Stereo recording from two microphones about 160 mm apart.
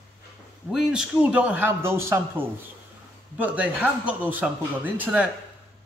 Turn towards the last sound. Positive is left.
turn(degrees=-10)  # may be behind; listen again after turning